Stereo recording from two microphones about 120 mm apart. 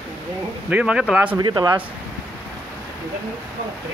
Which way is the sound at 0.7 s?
5° right (ahead or behind).